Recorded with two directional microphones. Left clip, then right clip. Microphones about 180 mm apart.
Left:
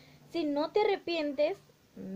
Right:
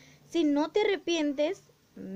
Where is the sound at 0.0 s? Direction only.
15° right (ahead or behind).